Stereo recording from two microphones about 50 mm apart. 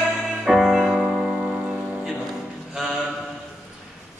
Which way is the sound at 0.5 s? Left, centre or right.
Centre.